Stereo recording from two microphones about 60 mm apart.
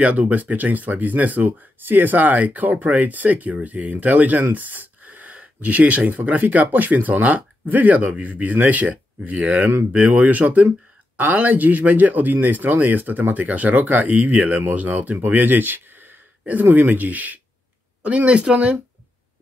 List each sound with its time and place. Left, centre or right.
0.0 s speech: right